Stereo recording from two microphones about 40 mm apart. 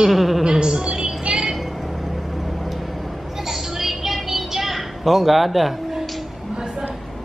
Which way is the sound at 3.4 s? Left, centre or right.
Centre.